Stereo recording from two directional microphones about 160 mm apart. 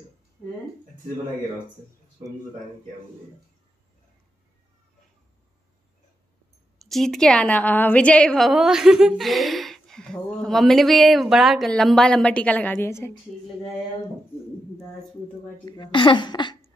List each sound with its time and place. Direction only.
6.8 s a woman's voice: centre (ahead or behind)
15.6 s a woman's voice: 25° left (ahead or behind)